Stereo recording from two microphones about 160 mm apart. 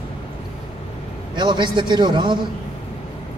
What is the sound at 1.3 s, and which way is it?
A man's voice, 30° right (ahead or behind).